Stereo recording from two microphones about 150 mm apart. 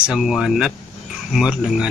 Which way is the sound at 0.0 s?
5° right (ahead or behind).